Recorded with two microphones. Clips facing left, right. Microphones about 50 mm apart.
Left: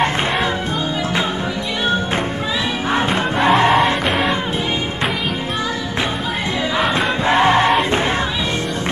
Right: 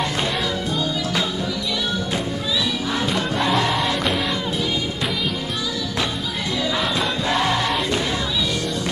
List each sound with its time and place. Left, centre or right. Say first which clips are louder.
2.9 s music: left 7 dB; left
6.8 s music: left 5 dB; left